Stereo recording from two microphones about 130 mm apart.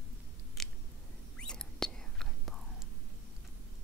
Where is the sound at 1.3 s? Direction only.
5° left (ahead or behind).